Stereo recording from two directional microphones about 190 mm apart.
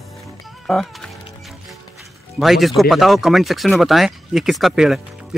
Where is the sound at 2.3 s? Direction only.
Centre (ahead or behind).